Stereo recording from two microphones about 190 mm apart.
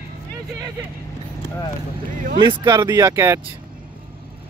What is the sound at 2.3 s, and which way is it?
Speech, 25° right (ahead or behind).